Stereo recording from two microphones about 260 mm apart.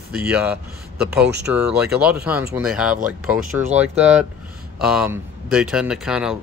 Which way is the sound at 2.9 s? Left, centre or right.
Right.